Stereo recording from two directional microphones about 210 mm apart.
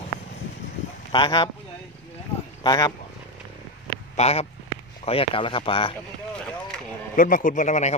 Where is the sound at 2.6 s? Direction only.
20° left (ahead or behind).